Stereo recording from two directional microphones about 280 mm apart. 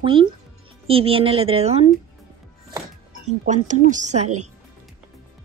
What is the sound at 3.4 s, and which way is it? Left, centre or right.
A woman's voice, right.